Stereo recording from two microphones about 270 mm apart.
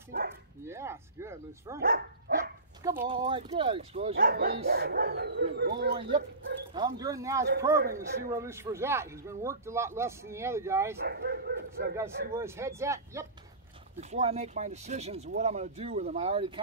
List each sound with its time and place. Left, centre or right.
0.1 s bow-wow: right
0.7 s speech: centre
1.8 s speech: right
2.8 s speech: centre
4.1 s speech: right
6.7 s speech: centre
7.7 s speech: right
8.3 s speech: centre
11.1 s speech: right
12.4 s speech: centre
13.9 s speech: right